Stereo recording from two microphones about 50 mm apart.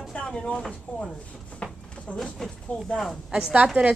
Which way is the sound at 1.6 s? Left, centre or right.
Centre.